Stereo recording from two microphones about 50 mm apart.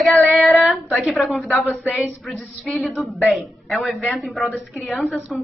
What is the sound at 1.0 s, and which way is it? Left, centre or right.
A woman's voice, centre.